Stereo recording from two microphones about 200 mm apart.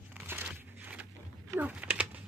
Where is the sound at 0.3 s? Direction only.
10° right (ahead or behind).